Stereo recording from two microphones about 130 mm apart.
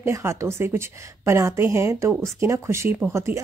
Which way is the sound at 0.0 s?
20° right (ahead or behind).